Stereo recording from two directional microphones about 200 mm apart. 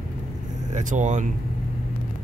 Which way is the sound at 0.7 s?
35° right (ahead or behind).